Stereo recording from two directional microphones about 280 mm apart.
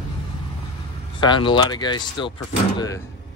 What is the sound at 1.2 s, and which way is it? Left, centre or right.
Speech, centre.